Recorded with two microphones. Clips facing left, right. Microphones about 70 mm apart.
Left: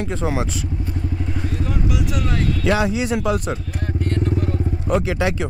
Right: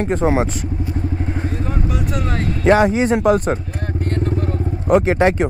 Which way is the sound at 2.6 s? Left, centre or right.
Right.